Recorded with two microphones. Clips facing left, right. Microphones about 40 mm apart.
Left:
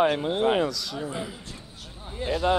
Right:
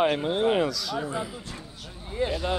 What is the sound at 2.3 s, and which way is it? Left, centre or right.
Speech, left.